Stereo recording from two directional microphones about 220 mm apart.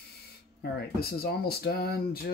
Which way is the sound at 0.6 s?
45° left (ahead or behind).